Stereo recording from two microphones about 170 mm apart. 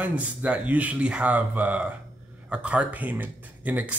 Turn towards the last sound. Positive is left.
turn(degrees=-10)  # may be behind; listen again after turning